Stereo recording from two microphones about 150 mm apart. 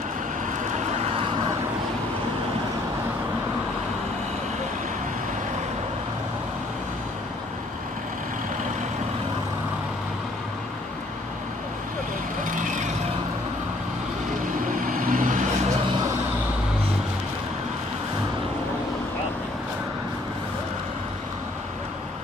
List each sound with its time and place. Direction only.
12.5 s vehicle: 55° right (ahead or behind)
14.8 s vehicle: 65° right (ahead or behind)